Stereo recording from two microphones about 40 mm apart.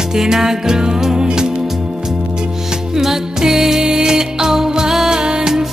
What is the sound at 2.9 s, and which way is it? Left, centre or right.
Music, centre.